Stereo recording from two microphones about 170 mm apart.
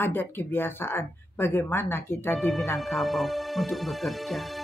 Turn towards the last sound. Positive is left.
turn(degrees=0)  # may be behind; listen again after turning